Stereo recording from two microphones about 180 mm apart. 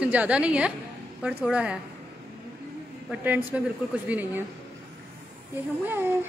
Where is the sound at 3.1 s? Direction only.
10° right (ahead or behind).